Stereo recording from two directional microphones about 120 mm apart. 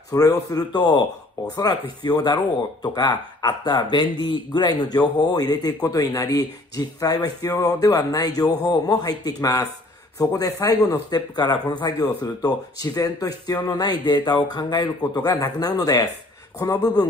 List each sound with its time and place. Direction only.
0.1 s a man's voice: 30° left (ahead or behind)